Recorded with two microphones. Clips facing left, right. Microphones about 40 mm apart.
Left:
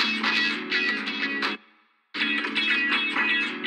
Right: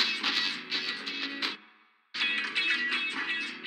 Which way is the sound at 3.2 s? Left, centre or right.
Left.